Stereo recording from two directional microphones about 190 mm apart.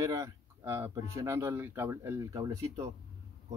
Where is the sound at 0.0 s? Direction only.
15° right (ahead or behind).